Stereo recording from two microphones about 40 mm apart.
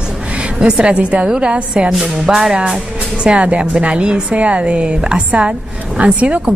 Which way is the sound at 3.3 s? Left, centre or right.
Right.